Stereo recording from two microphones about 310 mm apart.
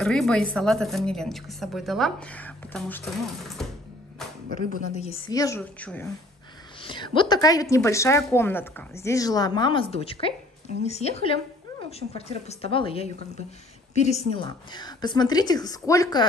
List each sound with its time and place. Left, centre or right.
0.0 s a woman's voice: centre
4.9 s a woman's voice: centre
6.8 s a woman's voice: centre